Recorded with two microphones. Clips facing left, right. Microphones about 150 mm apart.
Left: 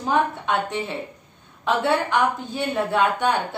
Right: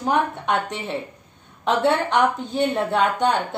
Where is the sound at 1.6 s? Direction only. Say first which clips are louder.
Right 2 dB; 20° right (ahead or behind).